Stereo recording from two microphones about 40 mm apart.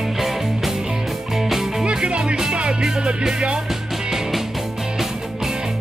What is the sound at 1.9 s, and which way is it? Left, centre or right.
Music, right.